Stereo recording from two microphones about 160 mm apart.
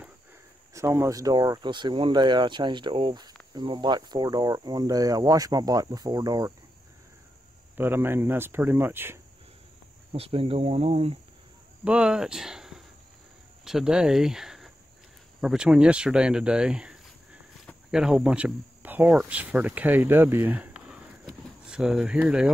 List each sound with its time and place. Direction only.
0.7 s speech: 20° right (ahead or behind)
7.7 s speech: 15° right (ahead or behind)
10.1 s speech: 35° right (ahead or behind)
11.8 s speech: 5° right (ahead or behind)